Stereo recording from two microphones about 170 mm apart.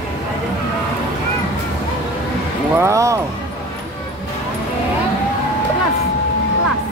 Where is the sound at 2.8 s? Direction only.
20° right (ahead or behind).